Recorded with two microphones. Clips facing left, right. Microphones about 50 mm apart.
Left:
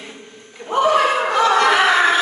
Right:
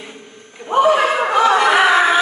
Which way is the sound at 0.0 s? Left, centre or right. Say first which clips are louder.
Right 1 dB; centre.